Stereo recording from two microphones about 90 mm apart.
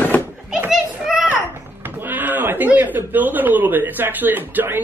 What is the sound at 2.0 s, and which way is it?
Speech, 20° right (ahead or behind).